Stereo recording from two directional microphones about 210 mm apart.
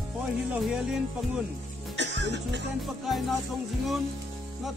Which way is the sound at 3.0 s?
Centre (ahead or behind).